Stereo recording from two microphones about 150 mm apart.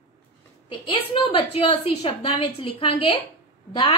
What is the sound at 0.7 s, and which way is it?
A woman's voice, 35° left (ahead or behind).